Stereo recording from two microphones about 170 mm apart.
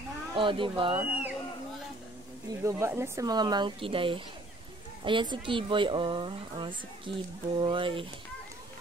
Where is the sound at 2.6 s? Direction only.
15° right (ahead or behind); by 8.1 s 30° right (ahead or behind).